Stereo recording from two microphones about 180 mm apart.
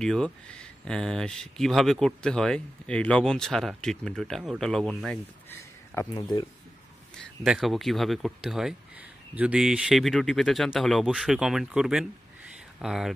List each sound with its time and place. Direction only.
0.0 s speech: 5° left (ahead or behind)
6.1 s speech: 25° left (ahead or behind)
7.4 s speech: centre (ahead or behind)